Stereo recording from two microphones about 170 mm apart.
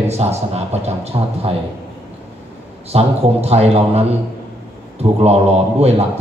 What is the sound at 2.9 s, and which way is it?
A man's voice, 35° right (ahead or behind).